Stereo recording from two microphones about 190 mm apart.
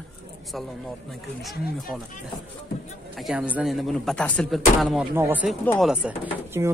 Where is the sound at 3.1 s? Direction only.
5° right (ahead or behind).